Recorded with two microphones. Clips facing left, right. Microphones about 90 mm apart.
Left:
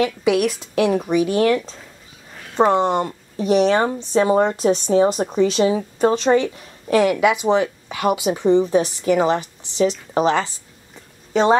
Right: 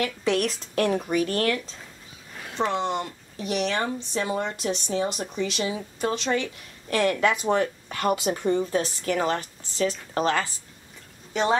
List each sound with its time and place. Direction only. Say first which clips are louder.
0.0 s a woman's voice: left 7 dB; 10° left (ahead or behind)
2.5 s speech: left 9 dB; 45° left (ahead or behind)
3.3 s speech: left 10 dB; 35° left (ahead or behind)
5.6 s speech: left 11 dB; 30° left (ahead or behind)
6.3 s a woman's voice: left 9 dB; 20° left (ahead or behind)